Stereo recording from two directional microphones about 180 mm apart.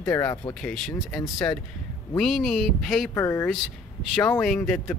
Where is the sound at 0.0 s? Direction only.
15° left (ahead or behind).